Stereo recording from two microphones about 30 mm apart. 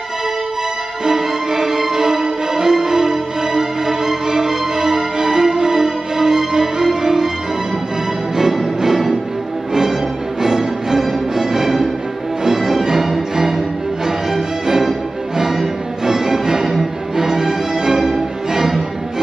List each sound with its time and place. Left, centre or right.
1.0 s music: centre
8.4 s music: centre
10.4 s music: centre